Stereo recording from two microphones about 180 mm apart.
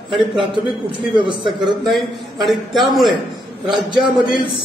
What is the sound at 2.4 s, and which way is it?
Speech, centre (ahead or behind).